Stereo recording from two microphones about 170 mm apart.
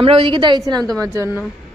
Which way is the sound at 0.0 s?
30° right (ahead or behind).